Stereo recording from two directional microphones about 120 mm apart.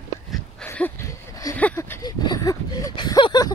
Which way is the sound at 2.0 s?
35° left (ahead or behind).